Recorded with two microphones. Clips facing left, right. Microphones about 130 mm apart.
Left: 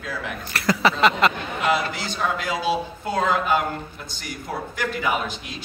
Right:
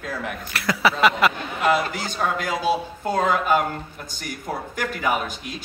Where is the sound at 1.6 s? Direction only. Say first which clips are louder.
Right 2 dB; 45° right (ahead or behind).